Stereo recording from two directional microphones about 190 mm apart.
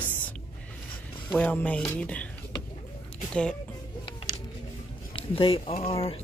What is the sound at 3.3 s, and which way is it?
Speech, 5° left (ahead or behind).